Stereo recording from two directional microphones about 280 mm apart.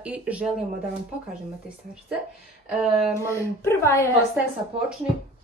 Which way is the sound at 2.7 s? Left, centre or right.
Centre.